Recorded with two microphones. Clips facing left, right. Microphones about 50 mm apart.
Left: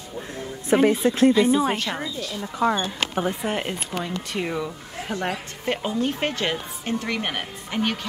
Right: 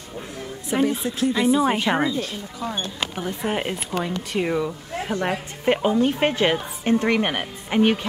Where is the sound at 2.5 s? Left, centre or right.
Left.